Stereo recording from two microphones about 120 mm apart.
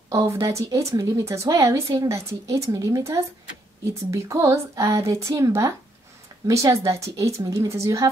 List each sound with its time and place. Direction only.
0.1 s a woman's voice: 25° right (ahead or behind)